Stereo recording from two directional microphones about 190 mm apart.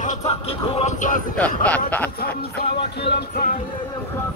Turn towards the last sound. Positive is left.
turn(degrees=55)  # may be behind; listen again after turning